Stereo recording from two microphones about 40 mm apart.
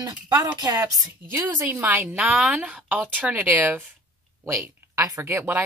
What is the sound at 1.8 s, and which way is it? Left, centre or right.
Speech, right.